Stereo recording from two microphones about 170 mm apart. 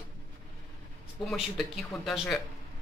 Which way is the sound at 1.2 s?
Centre (ahead or behind).